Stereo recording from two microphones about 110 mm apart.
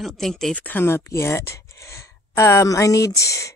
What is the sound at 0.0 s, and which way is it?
Speech, 5° left (ahead or behind).